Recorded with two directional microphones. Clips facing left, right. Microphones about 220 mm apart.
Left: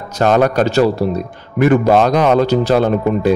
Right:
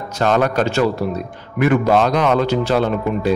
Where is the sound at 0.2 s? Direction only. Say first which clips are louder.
Left 4 dB; 45° left (ahead or behind).